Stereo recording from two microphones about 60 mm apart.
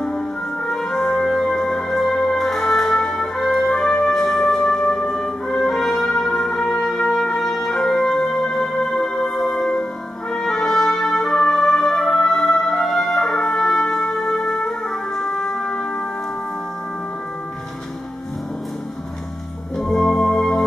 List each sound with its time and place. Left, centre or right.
0.7 s music: centre
5.1 s brass instrument: centre
5.9 s music: centre
6.3 s music: centre
19.8 s organ: centre